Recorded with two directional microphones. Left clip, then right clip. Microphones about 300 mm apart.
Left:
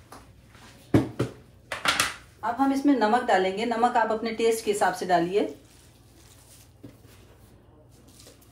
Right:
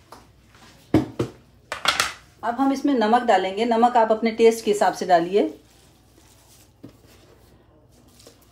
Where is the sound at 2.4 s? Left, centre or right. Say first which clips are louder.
Right 3 dB; right.